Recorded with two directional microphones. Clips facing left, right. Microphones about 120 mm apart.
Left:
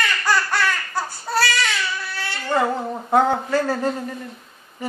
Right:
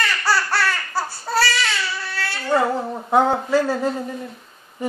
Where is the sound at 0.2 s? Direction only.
5° right (ahead or behind).